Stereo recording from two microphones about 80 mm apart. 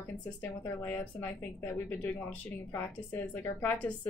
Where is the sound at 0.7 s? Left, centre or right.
Left.